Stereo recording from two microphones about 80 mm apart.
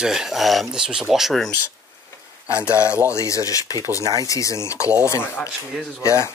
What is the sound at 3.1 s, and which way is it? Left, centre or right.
Speech, left.